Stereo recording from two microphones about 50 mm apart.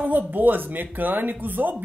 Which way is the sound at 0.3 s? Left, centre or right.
Right.